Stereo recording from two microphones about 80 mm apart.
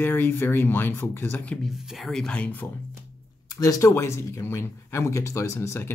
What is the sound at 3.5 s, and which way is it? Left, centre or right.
Speech, left.